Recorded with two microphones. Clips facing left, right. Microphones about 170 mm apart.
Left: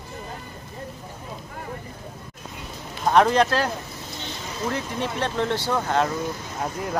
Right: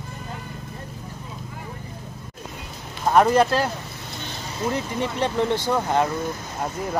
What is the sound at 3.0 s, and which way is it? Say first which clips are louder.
Speech: right 1 dB; 5° right (ahead or behind).